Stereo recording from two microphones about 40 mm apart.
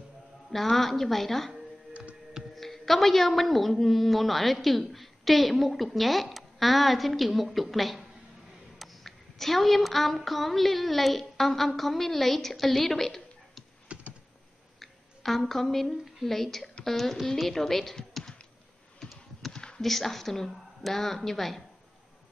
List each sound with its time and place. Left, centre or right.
0.5 s a woman's voice: centre
2.5 s a woman's voice: centre
14.8 s a woman's voice: centre
19.5 s a sound: centre
19.8 s a woman's voice: centre